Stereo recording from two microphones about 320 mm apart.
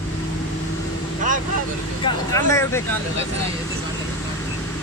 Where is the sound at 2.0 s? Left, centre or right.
Centre.